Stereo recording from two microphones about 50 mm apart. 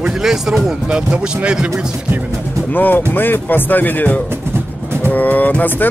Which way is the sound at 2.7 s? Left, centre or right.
Left.